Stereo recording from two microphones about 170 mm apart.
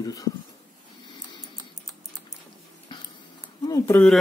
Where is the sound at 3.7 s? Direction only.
15° left (ahead or behind).